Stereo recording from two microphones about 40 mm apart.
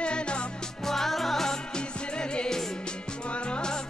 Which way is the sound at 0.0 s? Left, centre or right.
Left.